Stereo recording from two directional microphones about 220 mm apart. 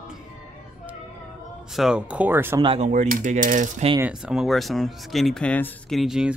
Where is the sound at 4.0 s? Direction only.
5° right (ahead or behind).